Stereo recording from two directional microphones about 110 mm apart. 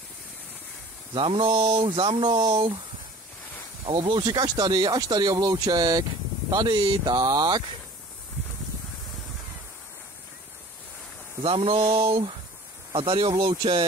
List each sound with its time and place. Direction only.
1.1 s speech: 50° right (ahead or behind)
3.8 s speech: 55° right (ahead or behind)
11.4 s speech: 55° right (ahead or behind)